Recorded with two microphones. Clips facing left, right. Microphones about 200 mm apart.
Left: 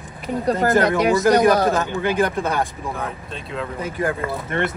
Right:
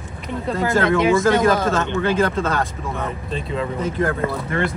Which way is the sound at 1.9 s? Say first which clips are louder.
Right 1 dB; 15° left (ahead or behind).